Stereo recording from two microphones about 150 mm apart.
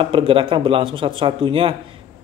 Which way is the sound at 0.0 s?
35° right (ahead or behind).